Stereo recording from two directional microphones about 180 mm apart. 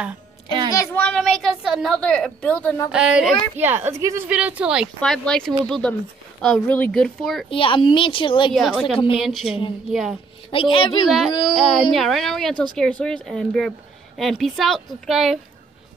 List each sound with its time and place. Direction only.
0.7 s a woman's voice: 15° left (ahead or behind)
2.9 s speech: 5° right (ahead or behind)
7.4 s speech: 30° left (ahead or behind)
8.5 s speech: centre (ahead or behind)
10.5 s speech: 30° left (ahead or behind)
11.1 s speech: centre (ahead or behind)